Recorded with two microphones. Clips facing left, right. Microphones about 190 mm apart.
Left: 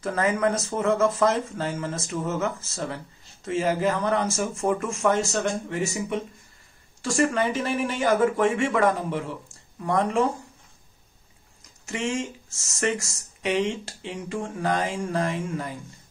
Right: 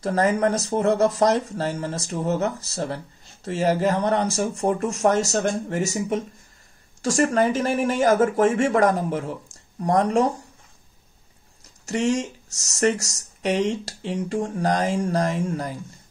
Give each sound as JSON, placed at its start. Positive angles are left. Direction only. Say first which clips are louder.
{"t": 0.0, "sound": "speech", "louder": "right 3 dB", "side_deg": -35}
{"t": 11.8, "sound": "speech", "louder": "right 5 dB", "side_deg": -40}